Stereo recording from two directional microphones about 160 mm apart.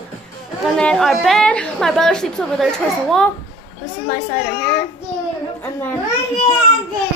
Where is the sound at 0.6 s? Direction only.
5° left (ahead or behind).